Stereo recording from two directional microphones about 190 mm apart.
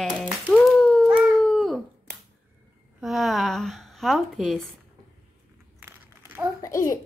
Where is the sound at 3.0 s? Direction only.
Centre (ahead or behind).